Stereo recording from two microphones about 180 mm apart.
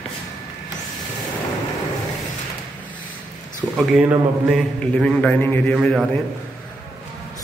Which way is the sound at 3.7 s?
Centre (ahead or behind).